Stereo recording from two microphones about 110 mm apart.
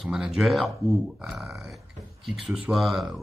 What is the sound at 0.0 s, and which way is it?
Speech, 5° right (ahead or behind).